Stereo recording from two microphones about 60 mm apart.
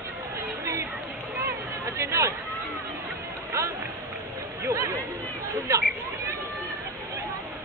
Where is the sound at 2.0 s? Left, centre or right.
Right.